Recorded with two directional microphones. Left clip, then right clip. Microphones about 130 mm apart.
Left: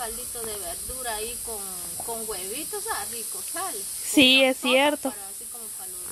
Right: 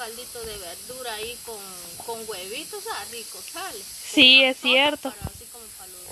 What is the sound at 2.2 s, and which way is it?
Speech, 30° left (ahead or behind).